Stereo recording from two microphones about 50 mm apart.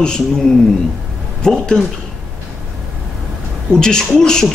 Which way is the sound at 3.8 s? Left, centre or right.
Centre.